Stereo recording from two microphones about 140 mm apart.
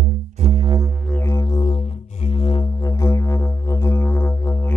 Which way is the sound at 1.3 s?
30° left (ahead or behind).